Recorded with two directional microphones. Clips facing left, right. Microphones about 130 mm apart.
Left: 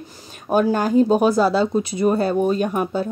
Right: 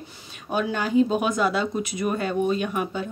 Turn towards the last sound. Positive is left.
turn(degrees=40)  # may be behind; listen again after turning